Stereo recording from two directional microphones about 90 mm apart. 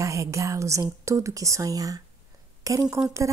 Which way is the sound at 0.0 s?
35° right (ahead or behind).